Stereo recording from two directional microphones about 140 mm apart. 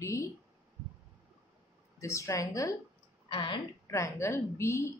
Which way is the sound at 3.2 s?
35° left (ahead or behind).